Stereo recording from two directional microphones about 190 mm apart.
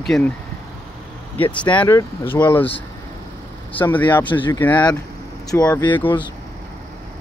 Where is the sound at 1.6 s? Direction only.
25° left (ahead or behind).